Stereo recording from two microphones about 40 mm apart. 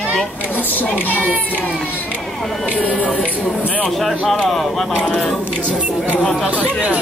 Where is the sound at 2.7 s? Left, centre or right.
Left.